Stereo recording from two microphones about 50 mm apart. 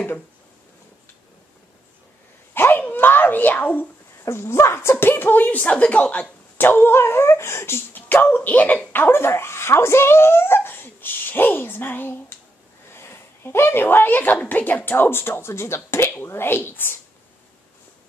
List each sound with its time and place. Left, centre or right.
2.5 s a sound: left
4.2 s speech: left
5.0 s speech: left
6.6 s speech: left
7.9 s speech: left
12.9 s speech: left